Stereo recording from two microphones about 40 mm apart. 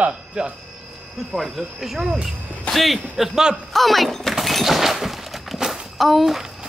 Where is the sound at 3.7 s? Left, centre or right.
Centre.